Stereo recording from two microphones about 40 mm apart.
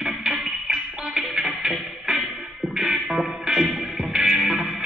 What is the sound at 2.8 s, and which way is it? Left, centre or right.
Music, centre.